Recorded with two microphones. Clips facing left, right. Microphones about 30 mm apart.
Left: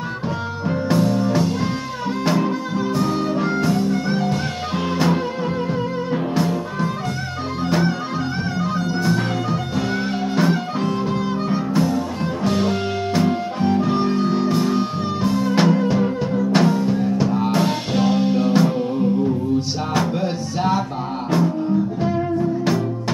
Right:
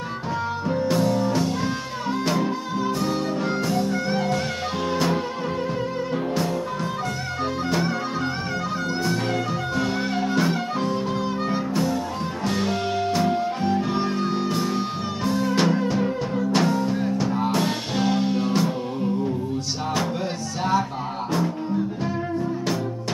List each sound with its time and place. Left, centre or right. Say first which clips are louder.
0.7 s music: left 3 dB; centre
8.5 s music: left 3 dB; centre
20.0 s music: left 4 dB; centre